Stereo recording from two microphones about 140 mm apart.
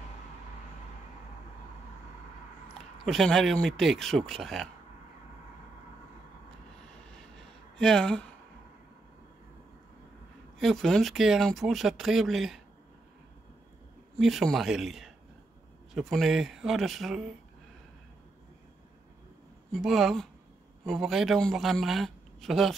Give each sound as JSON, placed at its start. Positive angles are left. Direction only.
{"t": 3.1, "sound": "speech", "side_deg": 0}
{"t": 7.2, "sound": "a sound", "side_deg": 5}
{"t": 10.6, "sound": "speech", "side_deg": 0}
{"t": 14.1, "sound": "speech", "side_deg": 0}
{"t": 19.7, "sound": "speech", "side_deg": 0}